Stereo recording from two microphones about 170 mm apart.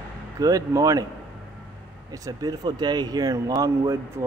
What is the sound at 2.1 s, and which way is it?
Speech, 20° right (ahead or behind).